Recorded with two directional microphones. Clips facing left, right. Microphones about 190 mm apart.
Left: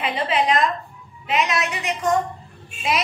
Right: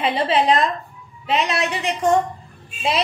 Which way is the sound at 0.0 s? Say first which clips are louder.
Right 3 dB; 30° right (ahead or behind).